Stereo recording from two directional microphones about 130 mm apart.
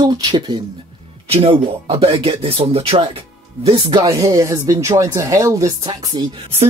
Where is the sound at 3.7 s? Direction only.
35° right (ahead or behind).